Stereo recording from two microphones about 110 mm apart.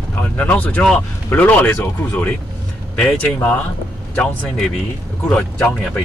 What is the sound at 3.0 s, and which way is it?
Speech, 5° left (ahead or behind).